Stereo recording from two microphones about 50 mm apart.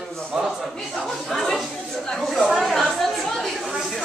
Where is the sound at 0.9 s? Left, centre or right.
Centre.